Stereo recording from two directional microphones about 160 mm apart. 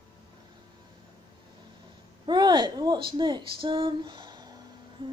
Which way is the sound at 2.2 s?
30° right (ahead or behind).